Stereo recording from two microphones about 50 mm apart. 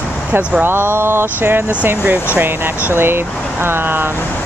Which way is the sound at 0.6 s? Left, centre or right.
Right.